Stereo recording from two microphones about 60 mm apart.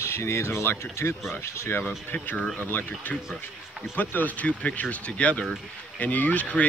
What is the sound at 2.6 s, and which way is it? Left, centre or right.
Speech, left.